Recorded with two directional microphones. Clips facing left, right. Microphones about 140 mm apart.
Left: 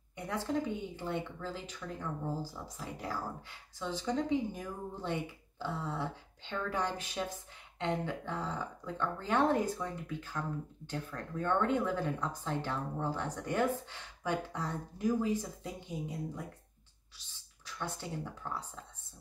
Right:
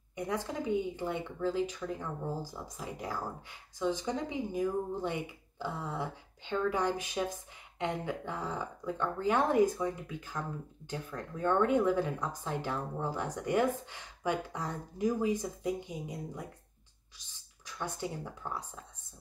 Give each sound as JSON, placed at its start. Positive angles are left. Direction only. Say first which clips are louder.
{"t": 0.1, "sound": "a woman's voice", "louder": "even", "side_deg": -15}
{"t": 17.6, "sound": "speech", "louder": "right 3 dB", "side_deg": -15}